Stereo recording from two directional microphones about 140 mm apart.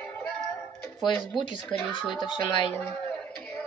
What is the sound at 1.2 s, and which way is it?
Speech, 35° left (ahead or behind).